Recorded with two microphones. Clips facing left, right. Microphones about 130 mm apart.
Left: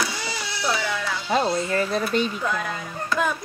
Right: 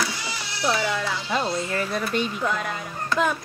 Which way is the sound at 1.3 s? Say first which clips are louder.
Left 5 dB; 30° left (ahead or behind).